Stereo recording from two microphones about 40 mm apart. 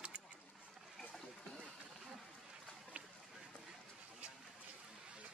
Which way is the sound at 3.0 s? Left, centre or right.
Right.